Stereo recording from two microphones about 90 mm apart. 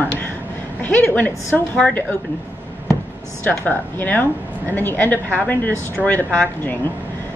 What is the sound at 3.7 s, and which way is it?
A woman's voice, 20° left (ahead or behind).